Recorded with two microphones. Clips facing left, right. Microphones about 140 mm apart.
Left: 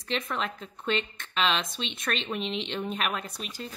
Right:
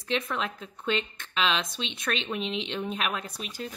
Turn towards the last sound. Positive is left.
turn(degrees=0)  # may be behind; listen again after turning